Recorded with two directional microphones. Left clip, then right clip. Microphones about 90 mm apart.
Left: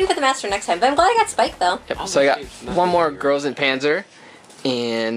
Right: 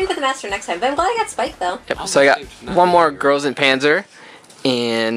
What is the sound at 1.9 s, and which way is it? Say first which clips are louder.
Speech: right 8 dB; 25° right (ahead or behind).